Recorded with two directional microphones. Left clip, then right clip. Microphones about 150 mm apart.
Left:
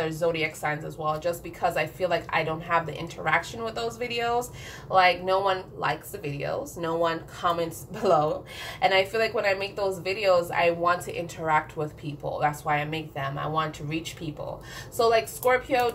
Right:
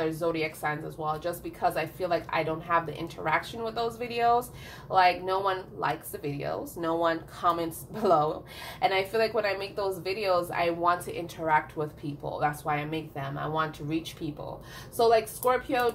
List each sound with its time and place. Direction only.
0.0 s a woman's voice: 30° right (ahead or behind)
15.0 s a woman's voice: 25° right (ahead or behind)